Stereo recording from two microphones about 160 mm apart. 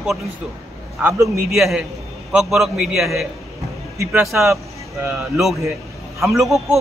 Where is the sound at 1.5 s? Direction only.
Centre (ahead or behind).